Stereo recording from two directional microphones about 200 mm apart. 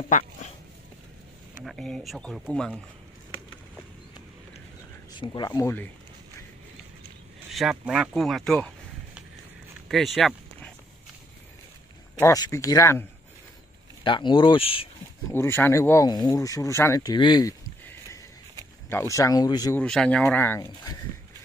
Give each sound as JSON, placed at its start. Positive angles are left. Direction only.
{"t": 1.6, "sound": "speech", "side_deg": 0}
{"t": 5.2, "sound": "speech", "side_deg": 20}
{"t": 7.5, "sound": "speech", "side_deg": 0}
{"t": 9.8, "sound": "a sound", "side_deg": 0}
{"t": 12.2, "sound": "speech", "side_deg": 15}
{"t": 14.0, "sound": "speech", "side_deg": 25}
{"t": 15.3, "sound": "speech", "side_deg": 10}
{"t": 19.8, "sound": "speech", "side_deg": 5}